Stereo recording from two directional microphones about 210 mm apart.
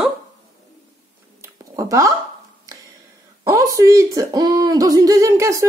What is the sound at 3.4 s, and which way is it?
Speech, 15° right (ahead or behind).